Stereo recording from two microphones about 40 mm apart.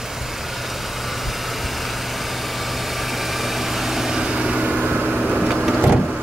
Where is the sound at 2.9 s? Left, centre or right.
Centre; by 4.9 s right.